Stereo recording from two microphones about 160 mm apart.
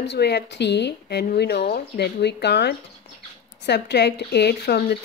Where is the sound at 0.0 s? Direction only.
90° left.